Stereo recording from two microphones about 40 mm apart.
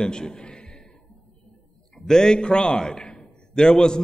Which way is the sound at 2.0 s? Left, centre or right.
Centre.